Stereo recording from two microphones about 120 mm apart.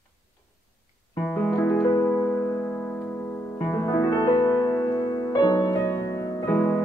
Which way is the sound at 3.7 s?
30° left (ahead or behind).